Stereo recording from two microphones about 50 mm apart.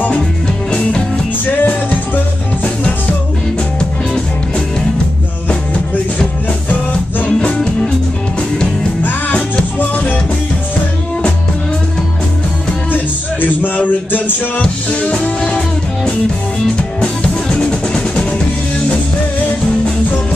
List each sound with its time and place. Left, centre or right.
0.7 s music: centre
1.5 s music: left
4.1 s music: centre
7.2 s music: left
9.8 s music: left
12.9 s music: left
16.7 s drum kit: left